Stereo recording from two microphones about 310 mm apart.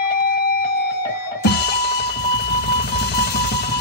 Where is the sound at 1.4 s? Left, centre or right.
Left.